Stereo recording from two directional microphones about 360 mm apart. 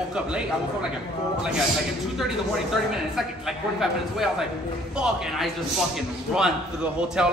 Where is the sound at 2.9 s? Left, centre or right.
Centre.